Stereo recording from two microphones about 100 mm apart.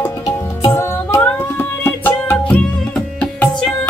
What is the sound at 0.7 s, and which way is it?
Music, 25° left (ahead or behind).